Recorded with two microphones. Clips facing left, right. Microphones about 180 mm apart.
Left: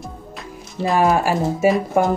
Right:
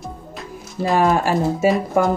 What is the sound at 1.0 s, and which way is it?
Speech, 15° left (ahead or behind).